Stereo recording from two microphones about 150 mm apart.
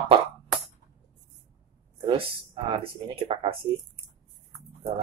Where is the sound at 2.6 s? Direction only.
35° right (ahead or behind).